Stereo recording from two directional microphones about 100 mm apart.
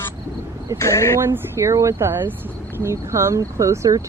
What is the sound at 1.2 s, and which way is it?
Speech, 30° right (ahead or behind).